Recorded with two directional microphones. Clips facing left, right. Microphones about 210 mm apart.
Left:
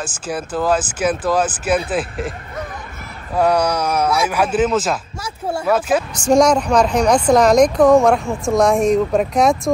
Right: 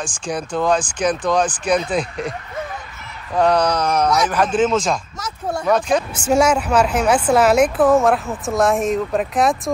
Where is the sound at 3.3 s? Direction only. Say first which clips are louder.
Even; 10° left (ahead or behind).